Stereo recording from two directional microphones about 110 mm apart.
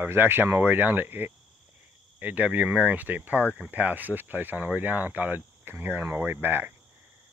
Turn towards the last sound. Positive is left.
turn(degrees=-20)  # may be behind; listen again after turning